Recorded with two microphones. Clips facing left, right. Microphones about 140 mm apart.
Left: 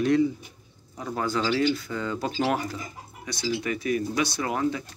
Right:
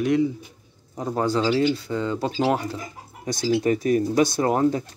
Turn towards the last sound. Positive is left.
turn(degrees=-40)  # may be behind; listen again after turning